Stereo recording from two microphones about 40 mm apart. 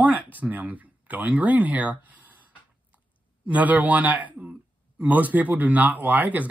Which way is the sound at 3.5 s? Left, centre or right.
Right.